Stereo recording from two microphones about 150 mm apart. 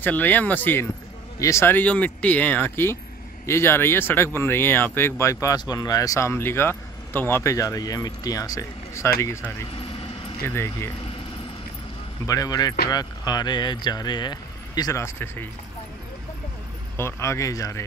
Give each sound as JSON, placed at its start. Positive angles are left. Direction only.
{"t": 0.0, "sound": "speech", "side_deg": 10}
{"t": 9.7, "sound": "vehicle", "side_deg": 40}
{"t": 10.4, "sound": "speech", "side_deg": 15}
{"t": 12.3, "sound": "speech", "side_deg": 25}
{"t": 16.9, "sound": "speech", "side_deg": 20}